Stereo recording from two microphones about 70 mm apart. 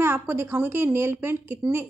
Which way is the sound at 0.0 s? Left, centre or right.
Right.